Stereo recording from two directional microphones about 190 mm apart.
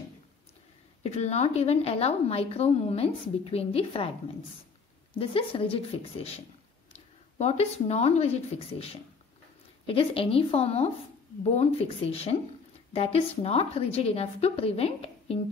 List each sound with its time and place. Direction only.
1.0 s a woman's voice: 35° left (ahead or behind)
5.2 s a woman's voice: 30° left (ahead or behind)